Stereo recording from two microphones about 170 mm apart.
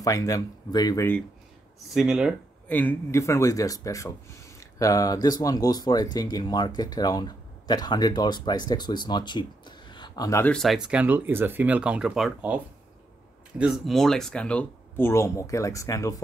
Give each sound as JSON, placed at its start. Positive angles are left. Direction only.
{"t": 0.0, "sound": "speech", "side_deg": 20}
{"t": 2.0, "sound": "speech", "side_deg": -5}
{"t": 2.7, "sound": "speech", "side_deg": 10}
{"t": 10.5, "sound": "speech", "side_deg": 0}
{"t": 13.6, "sound": "speech", "side_deg": 0}